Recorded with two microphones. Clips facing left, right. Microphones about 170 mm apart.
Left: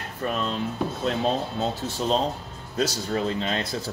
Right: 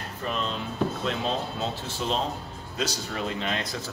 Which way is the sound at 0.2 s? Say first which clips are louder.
Left 4 dB; 55° left (ahead or behind).